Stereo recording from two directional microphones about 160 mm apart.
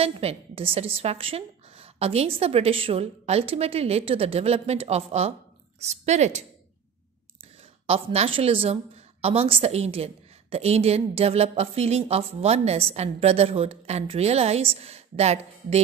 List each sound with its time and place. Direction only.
0.0 s a woman's voice: 40° right (ahead or behind)
7.8 s a woman's voice: 40° right (ahead or behind)